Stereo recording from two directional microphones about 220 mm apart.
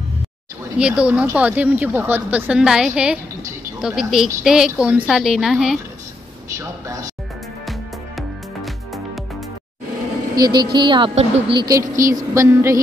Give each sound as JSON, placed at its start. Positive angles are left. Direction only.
{"t": 0.7, "sound": "a woman's voice", "side_deg": -5}
{"t": 8.2, "sound": "music", "side_deg": 0}
{"t": 10.3, "sound": "speech", "side_deg": -20}